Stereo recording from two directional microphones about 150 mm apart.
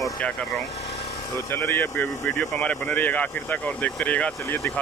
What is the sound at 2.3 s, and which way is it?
Speech, 5° left (ahead or behind).